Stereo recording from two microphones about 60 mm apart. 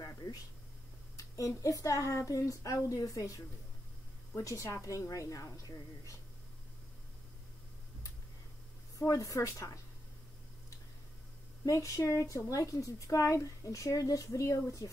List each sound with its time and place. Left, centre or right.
1.1 s a sound: left
1.6 s a woman's voice: left
4.5 s speech: left
8.9 s a woman's voice: left
11.6 s speech: left